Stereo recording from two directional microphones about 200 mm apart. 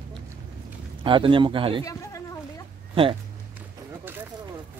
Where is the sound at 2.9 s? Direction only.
25° right (ahead or behind).